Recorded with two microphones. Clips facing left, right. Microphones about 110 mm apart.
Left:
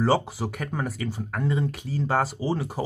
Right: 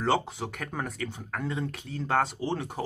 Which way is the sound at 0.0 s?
5° left (ahead or behind).